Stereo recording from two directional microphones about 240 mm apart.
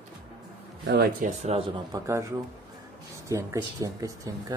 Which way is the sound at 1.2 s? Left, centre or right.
Right.